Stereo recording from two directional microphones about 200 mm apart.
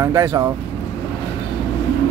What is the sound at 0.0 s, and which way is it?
Speech, 15° right (ahead or behind).